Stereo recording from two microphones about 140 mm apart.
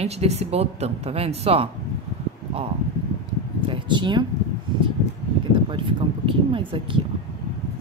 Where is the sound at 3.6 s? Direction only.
35° right (ahead or behind).